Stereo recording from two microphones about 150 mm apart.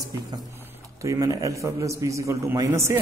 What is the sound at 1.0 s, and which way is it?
A man's voice, 20° right (ahead or behind).